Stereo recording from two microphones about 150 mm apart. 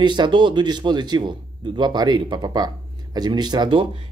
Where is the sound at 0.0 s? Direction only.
30° right (ahead or behind).